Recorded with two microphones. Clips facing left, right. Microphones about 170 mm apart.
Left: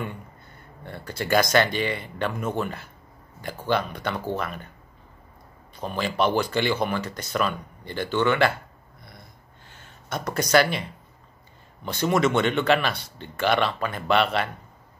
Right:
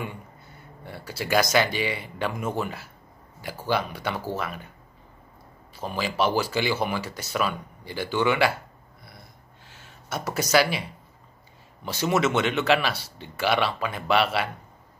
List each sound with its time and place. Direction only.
0.8 s speech: 5° right (ahead or behind)
5.8 s speech: 5° right (ahead or behind)
9.7 s speech: 5° right (ahead or behind)